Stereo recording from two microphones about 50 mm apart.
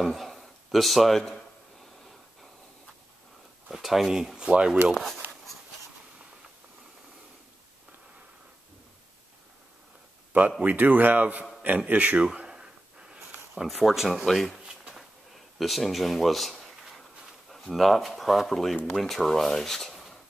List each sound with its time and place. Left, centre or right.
0.0 s speech: centre
3.6 s speech: centre
4.9 s speech: centre
10.6 s speech: right
12.4 s a sound: centre
13.7 s speech: centre
14.7 s bee: centre
15.3 s a sound: centre
17.5 s speech: centre